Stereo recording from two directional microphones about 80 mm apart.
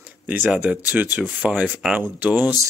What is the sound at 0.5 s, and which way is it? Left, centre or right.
Speech, centre.